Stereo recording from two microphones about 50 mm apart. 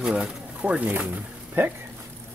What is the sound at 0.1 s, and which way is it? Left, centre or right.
Speech, right.